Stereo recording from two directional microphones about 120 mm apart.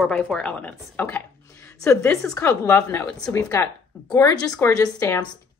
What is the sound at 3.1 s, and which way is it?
Speech, 5° left (ahead or behind).